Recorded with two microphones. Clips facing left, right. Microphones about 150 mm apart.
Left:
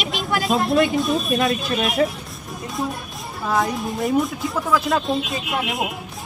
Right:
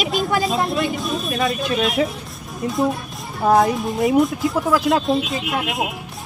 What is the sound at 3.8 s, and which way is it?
Speech, centre (ahead or behind).